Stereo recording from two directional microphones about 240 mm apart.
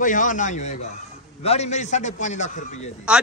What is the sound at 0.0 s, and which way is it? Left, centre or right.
A man's voice, left.